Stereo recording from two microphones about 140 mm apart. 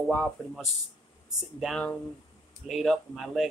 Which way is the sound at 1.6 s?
5° left (ahead or behind).